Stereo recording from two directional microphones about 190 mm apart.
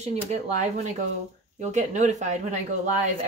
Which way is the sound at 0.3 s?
40° right (ahead or behind).